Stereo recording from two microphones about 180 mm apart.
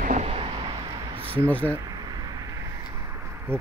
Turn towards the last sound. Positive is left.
turn(degrees=-15)  # may be behind; listen again after turning